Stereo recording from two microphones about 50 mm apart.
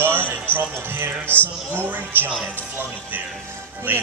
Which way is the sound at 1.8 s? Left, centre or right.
Right.